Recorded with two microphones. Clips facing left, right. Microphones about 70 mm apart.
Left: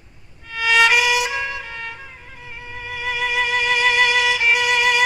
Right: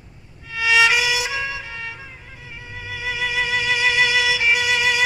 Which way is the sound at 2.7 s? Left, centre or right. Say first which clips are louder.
Left 2 dB; left.